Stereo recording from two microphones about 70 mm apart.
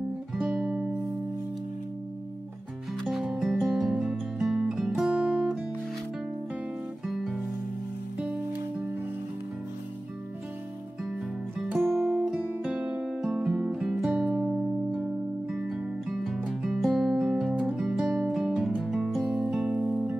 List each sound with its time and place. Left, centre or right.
0.6 s music: centre
3.0 s music: centre
5.1 s music: centre
7.1 s music: centre
11.8 s music: centre
12.2 s music: centre
14.4 s music: centre